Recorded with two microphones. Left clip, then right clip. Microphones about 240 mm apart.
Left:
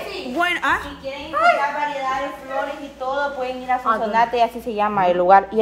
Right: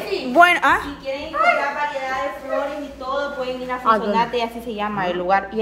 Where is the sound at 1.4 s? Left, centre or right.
Left.